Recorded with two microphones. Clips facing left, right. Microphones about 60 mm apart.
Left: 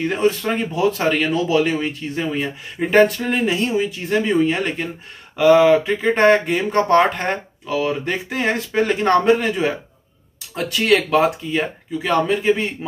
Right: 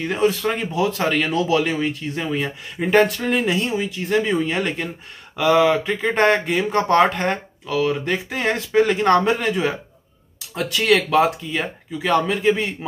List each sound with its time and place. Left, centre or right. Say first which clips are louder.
0.0 s speech: left 1 dB; centre
2.3 s speech: even; centre
2.9 s speech: left 2 dB; centre